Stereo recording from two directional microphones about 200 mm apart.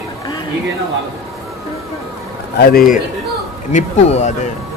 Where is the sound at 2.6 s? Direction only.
45° left (ahead or behind).